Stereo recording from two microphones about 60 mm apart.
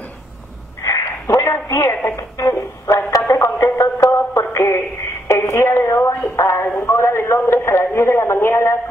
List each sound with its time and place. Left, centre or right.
0.8 s a sound: left
2.0 s a man's voice: left
3.2 s a man's voice: left
3.7 s music: left
5.3 s a man's voice: left